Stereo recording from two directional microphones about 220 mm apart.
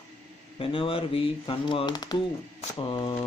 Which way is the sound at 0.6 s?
25° left (ahead or behind).